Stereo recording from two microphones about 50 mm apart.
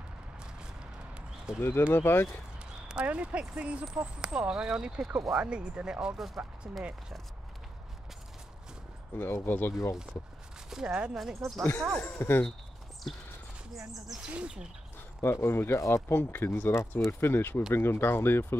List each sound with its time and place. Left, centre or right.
1.1 s a sound: centre
1.6 s speech: left
2.6 s a sound: centre
3.1 s speech: right
6.1 s speech: centre
9.1 s speech: left
10.7 s speech: centre
12.2 s speech: left
13.0 s speech: centre
14.2 s speech: right
15.2 s speech: left
16.2 s speech: left